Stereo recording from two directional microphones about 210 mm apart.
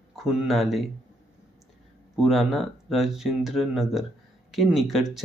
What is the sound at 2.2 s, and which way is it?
Speech, centre (ahead or behind).